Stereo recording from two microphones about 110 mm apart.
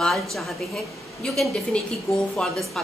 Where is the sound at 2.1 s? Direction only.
25° left (ahead or behind).